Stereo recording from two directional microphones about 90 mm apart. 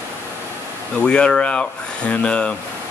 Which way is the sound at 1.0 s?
10° left (ahead or behind).